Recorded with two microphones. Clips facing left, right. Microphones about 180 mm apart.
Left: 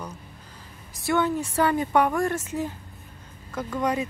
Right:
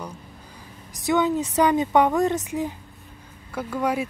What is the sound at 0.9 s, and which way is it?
Speech, 15° right (ahead or behind).